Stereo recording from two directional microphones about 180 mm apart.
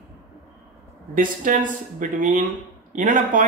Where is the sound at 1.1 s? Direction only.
50° right (ahead or behind).